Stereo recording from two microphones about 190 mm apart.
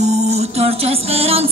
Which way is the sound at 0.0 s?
35° right (ahead or behind).